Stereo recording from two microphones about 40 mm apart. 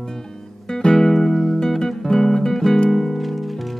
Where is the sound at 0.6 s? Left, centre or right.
Centre.